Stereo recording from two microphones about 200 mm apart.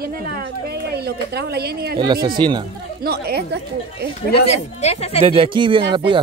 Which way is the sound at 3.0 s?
50° right (ahead or behind).